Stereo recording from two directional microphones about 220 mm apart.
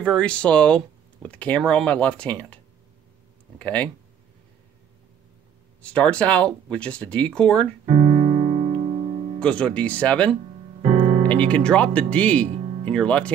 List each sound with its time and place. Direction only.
0.0 s speech: 5° left (ahead or behind)
5.8 s speech: 5° left (ahead or behind)
7.8 s piano: 35° right (ahead or behind)
9.4 s speech: 5° left (ahead or behind)
10.8 s music: 25° right (ahead or behind)
11.2 s speech: 5° left (ahead or behind)